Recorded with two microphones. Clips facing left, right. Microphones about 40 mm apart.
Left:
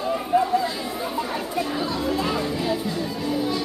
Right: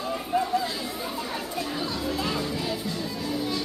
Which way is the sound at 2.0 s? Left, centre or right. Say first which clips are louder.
Left 4 dB; centre.